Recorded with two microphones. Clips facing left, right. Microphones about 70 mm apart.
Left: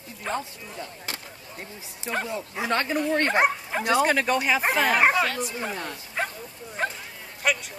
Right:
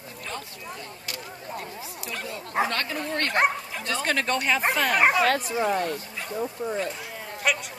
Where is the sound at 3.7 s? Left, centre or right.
Left.